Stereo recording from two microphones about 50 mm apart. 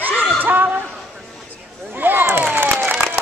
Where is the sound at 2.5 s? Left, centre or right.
Right.